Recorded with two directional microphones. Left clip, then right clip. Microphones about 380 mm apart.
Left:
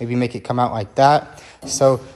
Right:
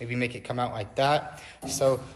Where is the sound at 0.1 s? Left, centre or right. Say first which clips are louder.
Left 8 dB; centre.